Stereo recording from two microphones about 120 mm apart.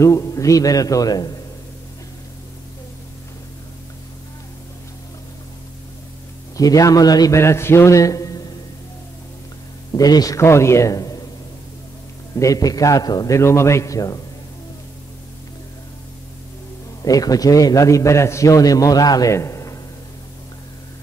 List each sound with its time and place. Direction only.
0.0 s a man's voice: 25° left (ahead or behind)
6.5 s a man's voice: 30° left (ahead or behind)
9.9 s a man's voice: 30° left (ahead or behind)
12.4 s a man's voice: 30° left (ahead or behind)
13.4 s a man's voice: 25° left (ahead or behind)
17.0 s a man's voice: 30° left (ahead or behind)